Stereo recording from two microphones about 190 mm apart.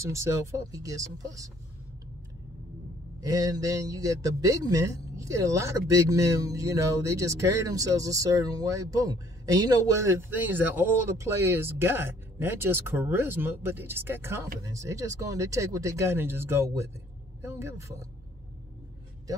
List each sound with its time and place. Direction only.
0.0 s speech: 15° right (ahead or behind)
3.2 s speech: 20° right (ahead or behind)